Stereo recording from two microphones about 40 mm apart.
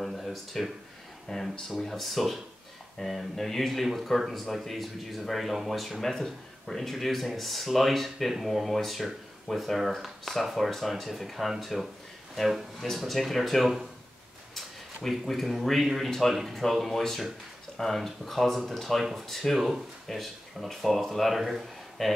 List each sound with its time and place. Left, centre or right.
0.0 s a sound: centre
1.3 s speech: centre
13.0 s speech: centre
15.0 s speech: centre